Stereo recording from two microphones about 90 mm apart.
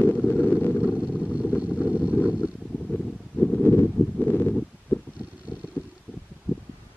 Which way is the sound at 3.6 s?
20° left (ahead or behind).